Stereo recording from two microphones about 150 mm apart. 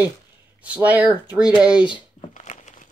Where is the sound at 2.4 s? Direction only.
50° left (ahead or behind).